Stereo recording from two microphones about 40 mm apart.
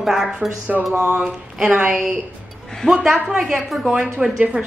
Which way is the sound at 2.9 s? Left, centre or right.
Centre.